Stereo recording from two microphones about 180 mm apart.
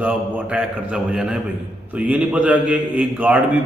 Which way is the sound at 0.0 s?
10° right (ahead or behind).